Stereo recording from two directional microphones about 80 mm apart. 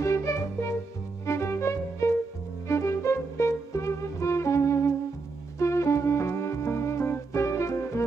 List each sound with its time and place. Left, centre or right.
0.0 s music: left